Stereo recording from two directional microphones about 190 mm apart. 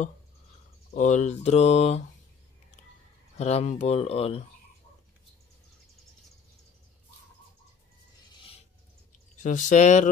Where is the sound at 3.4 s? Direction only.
35° left (ahead or behind).